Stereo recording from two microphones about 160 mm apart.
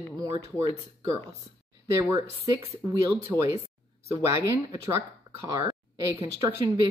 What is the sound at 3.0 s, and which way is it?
Speech, 20° right (ahead or behind).